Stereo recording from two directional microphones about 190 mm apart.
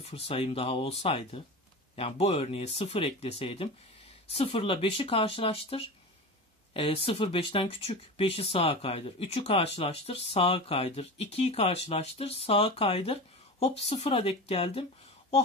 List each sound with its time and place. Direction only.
0.0 s speech: 30° left (ahead or behind)